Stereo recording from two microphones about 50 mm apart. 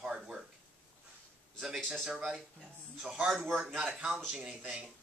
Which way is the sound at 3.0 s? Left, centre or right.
Centre.